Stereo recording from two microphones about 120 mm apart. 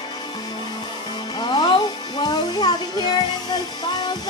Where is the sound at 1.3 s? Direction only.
35° left (ahead or behind).